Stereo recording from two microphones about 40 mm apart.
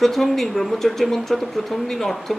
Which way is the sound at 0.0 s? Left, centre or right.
Centre.